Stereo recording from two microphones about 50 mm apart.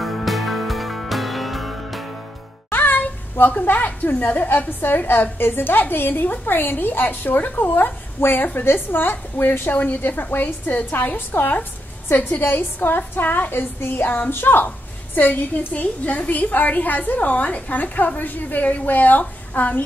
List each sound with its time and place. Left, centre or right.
0.0 s music: centre
2.7 s a sound: left
3.6 s a woman's voice: left
14.0 s a woman's voice: left
14.3 s a woman's voice: left
15.1 s a woman's voice: left